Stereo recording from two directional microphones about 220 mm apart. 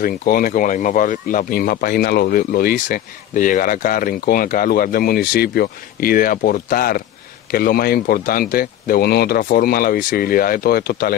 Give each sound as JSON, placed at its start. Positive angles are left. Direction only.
{"t": 0.0, "sound": "speech", "side_deg": 40}